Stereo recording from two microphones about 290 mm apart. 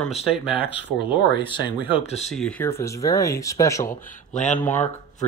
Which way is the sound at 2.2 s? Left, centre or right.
Centre.